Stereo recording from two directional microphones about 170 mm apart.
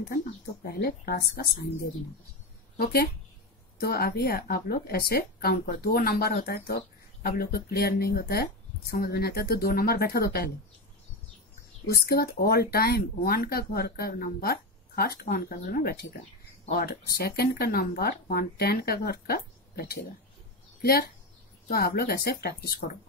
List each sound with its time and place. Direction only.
0.7 s speech: 65° left (ahead or behind)
2.8 s speech: 65° left (ahead or behind)
12.1 s speech: 65° left (ahead or behind)
21.6 s speech: 65° left (ahead or behind)